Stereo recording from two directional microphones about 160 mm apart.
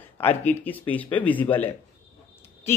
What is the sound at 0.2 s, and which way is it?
A man's voice, 10° left (ahead or behind).